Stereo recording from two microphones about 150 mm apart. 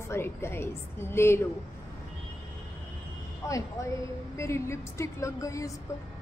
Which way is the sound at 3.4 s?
20° left (ahead or behind).